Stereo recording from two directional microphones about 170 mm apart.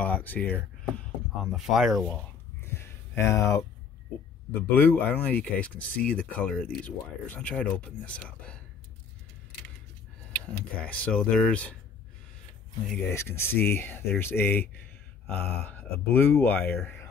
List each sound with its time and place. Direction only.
0.0 s speech: 10° left (ahead or behind)
2.6 s a sound: 15° left (ahead or behind)
4.6 s speech: 10° left (ahead or behind)
10.8 s speech: 5° left (ahead or behind)
13.1 s speech: 15° left (ahead or behind)